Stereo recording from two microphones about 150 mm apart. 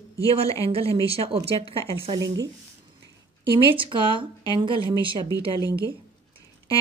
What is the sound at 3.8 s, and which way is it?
Speech, 35° right (ahead or behind).